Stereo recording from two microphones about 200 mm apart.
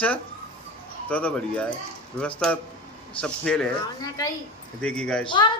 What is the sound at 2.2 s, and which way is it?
A man's voice, 5° left (ahead or behind).